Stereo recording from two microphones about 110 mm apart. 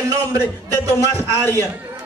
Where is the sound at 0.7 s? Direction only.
20° left (ahead or behind).